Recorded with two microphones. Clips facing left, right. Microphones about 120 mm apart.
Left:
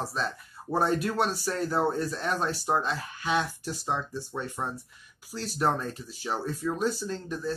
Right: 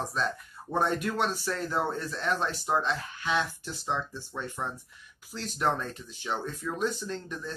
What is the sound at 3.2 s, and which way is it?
Speech, 10° left (ahead or behind).